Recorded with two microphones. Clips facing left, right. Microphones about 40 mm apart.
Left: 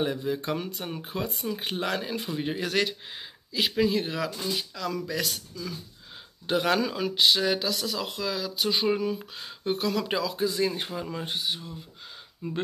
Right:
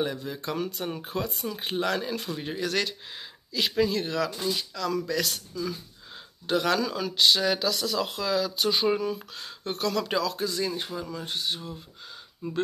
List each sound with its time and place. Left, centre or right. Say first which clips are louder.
0.0 s speech: left 2 dB; centre
6.4 s speech: even; centre
11.3 s speech: right 2 dB; centre
12.4 s speech: even; left